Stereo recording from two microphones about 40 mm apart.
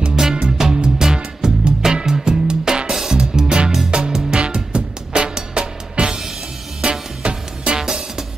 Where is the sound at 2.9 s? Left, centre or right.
Centre; by 7.7 s right.